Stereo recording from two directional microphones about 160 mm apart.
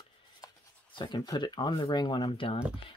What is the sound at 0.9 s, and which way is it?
Speech, 25° left (ahead or behind).